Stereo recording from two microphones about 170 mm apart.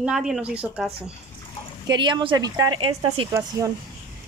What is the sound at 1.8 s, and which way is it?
Speech, 25° right (ahead or behind).